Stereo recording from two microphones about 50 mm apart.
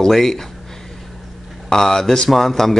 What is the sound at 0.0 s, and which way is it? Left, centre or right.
Speech, centre.